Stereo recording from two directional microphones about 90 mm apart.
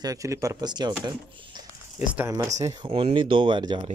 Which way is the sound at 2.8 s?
85° right.